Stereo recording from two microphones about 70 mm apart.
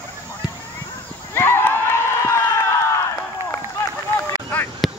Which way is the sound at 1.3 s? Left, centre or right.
Left.